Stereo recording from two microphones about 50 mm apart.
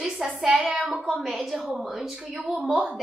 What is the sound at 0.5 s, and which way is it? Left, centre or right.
Child singing, centre.